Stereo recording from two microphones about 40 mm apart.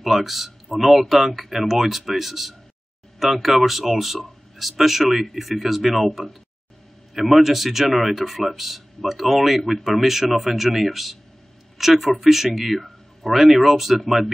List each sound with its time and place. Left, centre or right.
0.0 s speech: centre